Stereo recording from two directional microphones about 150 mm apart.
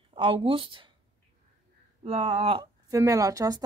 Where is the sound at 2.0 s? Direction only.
40° right (ahead or behind).